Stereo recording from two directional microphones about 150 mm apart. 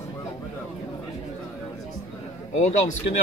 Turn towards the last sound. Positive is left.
turn(degrees=50)  # may be behind; listen again after turning